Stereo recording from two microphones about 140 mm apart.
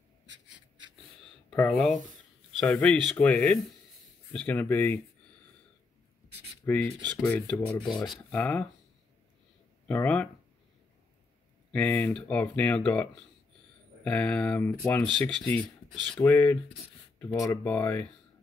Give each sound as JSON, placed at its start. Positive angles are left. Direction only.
{"t": 1.5, "sound": "speech", "side_deg": 5}
{"t": 6.6, "sound": "speech", "side_deg": 15}
{"t": 7.2, "sound": "speech", "side_deg": 5}
{"t": 9.8, "sound": "speech", "side_deg": 10}
{"t": 11.7, "sound": "speech", "side_deg": 10}